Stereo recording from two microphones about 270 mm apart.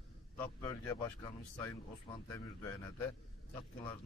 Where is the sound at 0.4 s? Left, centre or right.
Centre.